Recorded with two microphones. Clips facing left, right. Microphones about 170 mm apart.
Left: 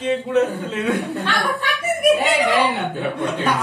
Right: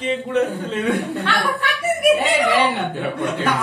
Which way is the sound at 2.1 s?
Centre (ahead or behind).